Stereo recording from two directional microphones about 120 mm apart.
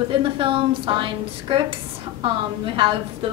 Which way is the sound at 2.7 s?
45° right (ahead or behind).